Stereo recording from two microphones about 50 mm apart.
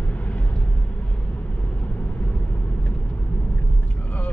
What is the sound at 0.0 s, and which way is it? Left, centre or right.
Vehicle, left.